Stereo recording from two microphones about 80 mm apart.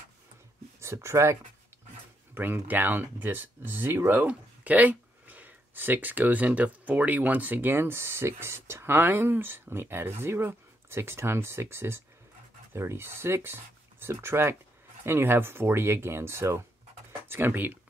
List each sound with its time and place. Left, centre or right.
0.7 s speech: right
2.3 s speech: right